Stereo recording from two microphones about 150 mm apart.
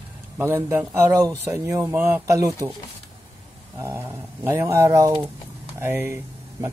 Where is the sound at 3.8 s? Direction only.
15° right (ahead or behind).